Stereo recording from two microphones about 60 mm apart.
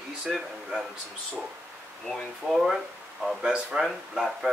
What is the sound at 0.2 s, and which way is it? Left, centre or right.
Speech, centre.